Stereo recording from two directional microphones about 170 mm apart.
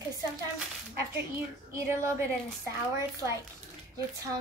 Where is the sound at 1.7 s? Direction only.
15° right (ahead or behind).